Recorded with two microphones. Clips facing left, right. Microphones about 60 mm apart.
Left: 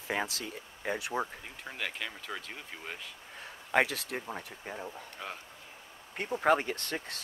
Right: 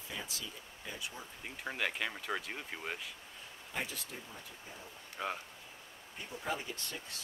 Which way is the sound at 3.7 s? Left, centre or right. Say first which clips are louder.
Left 13 dB; left.